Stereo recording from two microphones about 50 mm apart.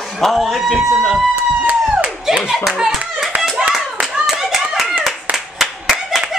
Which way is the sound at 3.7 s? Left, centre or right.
Right.